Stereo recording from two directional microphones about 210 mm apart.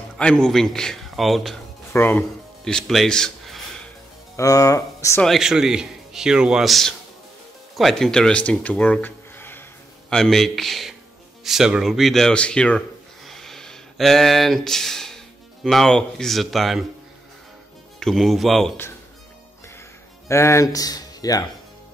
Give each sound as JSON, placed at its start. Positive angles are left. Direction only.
{"t": 0.2, "sound": "speech", "side_deg": 5}
{"t": 4.4, "sound": "speech", "side_deg": 15}
{"t": 5.2, "sound": "a man's voice", "side_deg": 0}
{"t": 13.3, "sound": "a sound", "side_deg": 0}
{"t": 15.6, "sound": "a man's voice", "side_deg": 0}
{"t": 17.9, "sound": "a man's voice", "side_deg": 0}
{"t": 20.2, "sound": "speech", "side_deg": 15}